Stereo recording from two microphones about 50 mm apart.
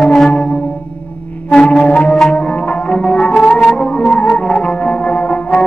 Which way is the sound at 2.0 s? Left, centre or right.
Centre.